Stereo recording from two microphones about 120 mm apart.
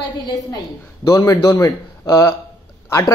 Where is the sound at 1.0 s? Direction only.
30° left (ahead or behind).